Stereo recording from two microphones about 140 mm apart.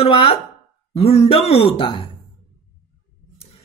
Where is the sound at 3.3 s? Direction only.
45° left (ahead or behind).